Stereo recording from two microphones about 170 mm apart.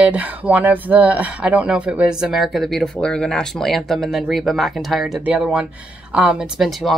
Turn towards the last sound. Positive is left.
turn(degrees=0)  # may be behind; listen again after turning